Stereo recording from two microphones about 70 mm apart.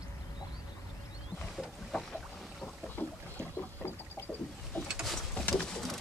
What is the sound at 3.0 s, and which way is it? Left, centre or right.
Boat, left.